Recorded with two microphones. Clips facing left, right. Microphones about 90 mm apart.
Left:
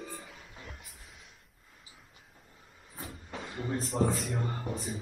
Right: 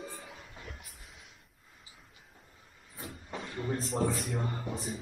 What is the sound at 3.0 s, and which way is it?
Train, centre (ahead or behind).